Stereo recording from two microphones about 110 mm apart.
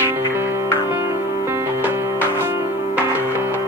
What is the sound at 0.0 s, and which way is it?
Music, 20° right (ahead or behind).